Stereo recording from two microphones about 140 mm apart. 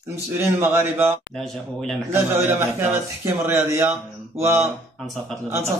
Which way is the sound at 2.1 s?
15° right (ahead or behind).